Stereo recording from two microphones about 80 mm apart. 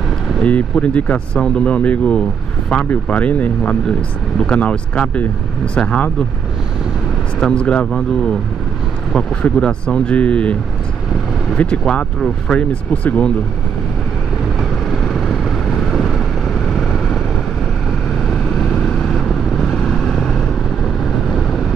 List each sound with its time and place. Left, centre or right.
0.4 s speech: centre
7.3 s speech: centre
14.6 s vehicle: centre
18.2 s vehicle: centre